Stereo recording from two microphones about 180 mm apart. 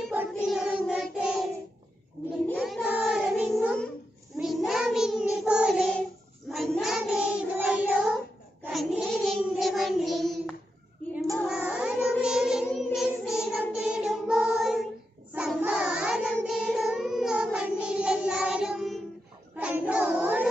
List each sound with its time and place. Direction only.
0.3 s child singing: centre (ahead or behind)
2.6 s child singing: 5° right (ahead or behind)
12.7 s singing: centre (ahead or behind)
13.7 s music: 5° right (ahead or behind)
15.3 s child singing: 5° right (ahead or behind)